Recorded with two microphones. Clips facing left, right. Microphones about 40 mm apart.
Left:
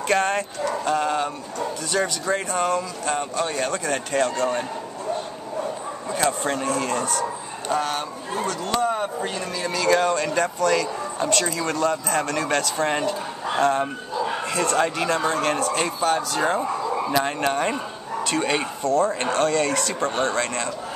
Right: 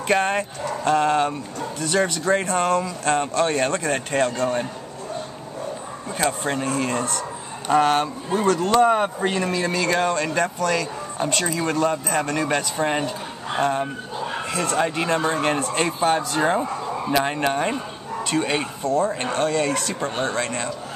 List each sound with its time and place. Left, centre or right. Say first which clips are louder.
0.1 s speech: right 1 dB; centre
0.8 s speech: right 6 dB; right
6.1 s speech: even; centre
6.6 s speech: right 1 dB; right
11.6 s speech: right 1 dB; right; by 14.9 s centre
15.0 s speech: right 1 dB; centre